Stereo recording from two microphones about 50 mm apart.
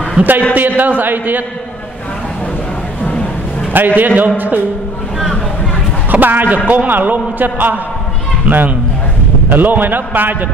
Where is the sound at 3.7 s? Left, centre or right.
Right.